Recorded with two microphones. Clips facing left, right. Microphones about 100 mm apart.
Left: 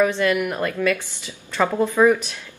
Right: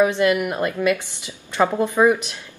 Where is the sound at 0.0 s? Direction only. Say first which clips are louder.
Right 2 dB; 20° right (ahead or behind).